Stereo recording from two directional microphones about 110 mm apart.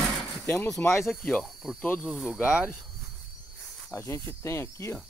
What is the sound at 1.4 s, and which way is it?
Speech, centre (ahead or behind).